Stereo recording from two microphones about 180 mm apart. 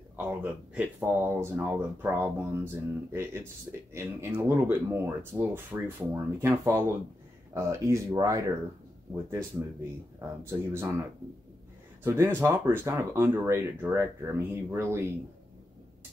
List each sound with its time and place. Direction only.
0.1 s speech: 10° right (ahead or behind)
10.1 s speech: 15° right (ahead or behind)
12.0 s speech: 15° right (ahead or behind)